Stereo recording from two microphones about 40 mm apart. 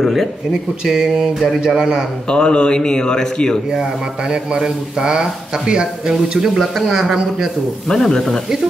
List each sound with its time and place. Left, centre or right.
0.8 s a man's voice: centre
2.2 s speech: left
4.3 s a man's voice: centre
7.9 s speech: centre